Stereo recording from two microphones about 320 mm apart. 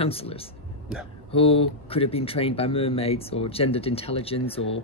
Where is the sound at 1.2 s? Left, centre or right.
Centre.